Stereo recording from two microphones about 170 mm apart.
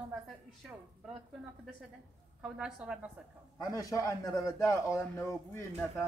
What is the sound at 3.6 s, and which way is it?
A man's voice, 20° left (ahead or behind).